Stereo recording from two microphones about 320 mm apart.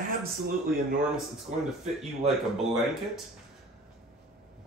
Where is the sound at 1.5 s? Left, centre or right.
Right.